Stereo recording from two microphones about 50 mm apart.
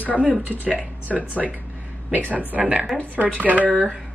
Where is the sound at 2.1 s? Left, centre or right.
Right.